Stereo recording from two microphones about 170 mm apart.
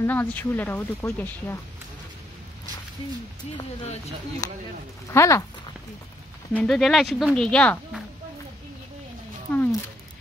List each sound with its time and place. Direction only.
0.0 s speech: 10° left (ahead or behind)
4.4 s speech: 20° left (ahead or behind)
6.5 s speech: 5° left (ahead or behind)
9.5 s speech: 10° left (ahead or behind)